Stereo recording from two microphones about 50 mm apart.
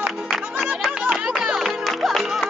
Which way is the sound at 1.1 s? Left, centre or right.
Centre.